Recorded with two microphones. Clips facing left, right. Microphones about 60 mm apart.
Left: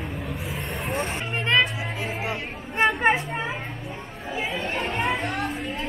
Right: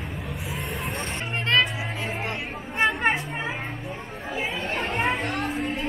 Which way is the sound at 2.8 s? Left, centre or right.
Centre.